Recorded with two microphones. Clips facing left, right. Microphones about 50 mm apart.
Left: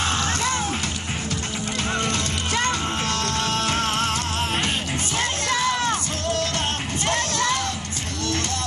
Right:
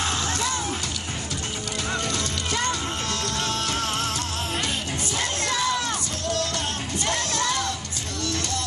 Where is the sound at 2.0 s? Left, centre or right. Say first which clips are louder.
Left 3 dB; left.